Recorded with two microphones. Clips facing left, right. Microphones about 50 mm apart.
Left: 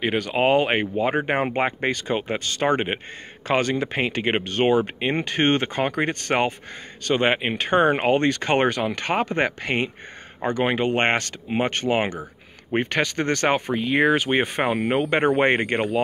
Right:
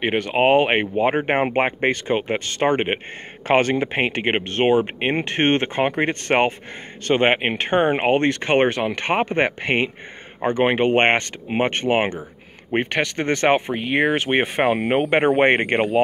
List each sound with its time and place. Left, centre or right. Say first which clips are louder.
0.0 s speech: right 3 dB; right
7.7 s speech: even; right
12.9 s speech: right 1 dB; centre
14.4 s speech: right 3 dB; right